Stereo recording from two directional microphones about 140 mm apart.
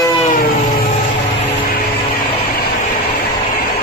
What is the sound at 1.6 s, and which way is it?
Vehicle, 90° left.